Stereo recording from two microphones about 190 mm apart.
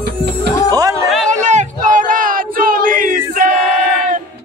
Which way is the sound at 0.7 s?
20° right (ahead or behind).